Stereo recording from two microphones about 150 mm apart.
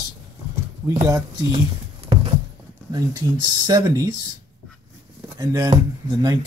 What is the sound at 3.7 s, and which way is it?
Speech, 25° right (ahead or behind).